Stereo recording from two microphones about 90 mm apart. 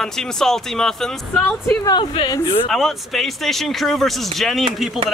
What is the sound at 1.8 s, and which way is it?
Speech, 50° left (ahead or behind).